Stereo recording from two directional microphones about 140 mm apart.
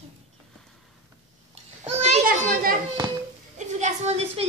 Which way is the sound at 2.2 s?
90° right.